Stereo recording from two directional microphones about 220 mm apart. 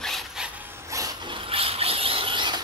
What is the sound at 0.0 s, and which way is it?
Dog, centre (ahead or behind).